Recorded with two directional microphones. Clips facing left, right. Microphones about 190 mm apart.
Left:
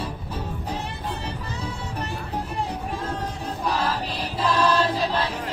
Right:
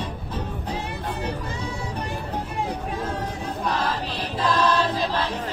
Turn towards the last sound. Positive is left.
turn(degrees=10)  # may be behind; listen again after turning